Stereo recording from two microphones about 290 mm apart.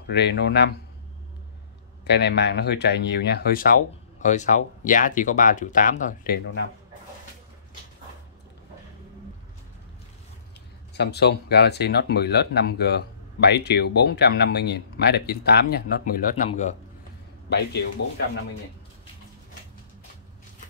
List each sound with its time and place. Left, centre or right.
0.1 s speech: left
2.0 s speech: left
11.0 s speech: left
17.5 s speech: left